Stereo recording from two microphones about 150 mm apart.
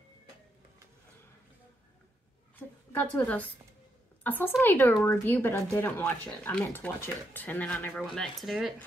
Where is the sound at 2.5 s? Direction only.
15° left (ahead or behind).